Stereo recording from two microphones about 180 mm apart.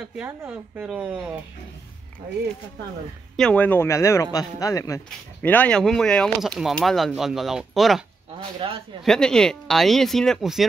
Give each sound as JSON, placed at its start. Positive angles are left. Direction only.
{"t": 0.2, "sound": "speech", "side_deg": -10}
{"t": 3.3, "sound": "speech", "side_deg": 5}
{"t": 8.5, "sound": "a man's voice", "side_deg": -30}
{"t": 9.0, "sound": "speech", "side_deg": 5}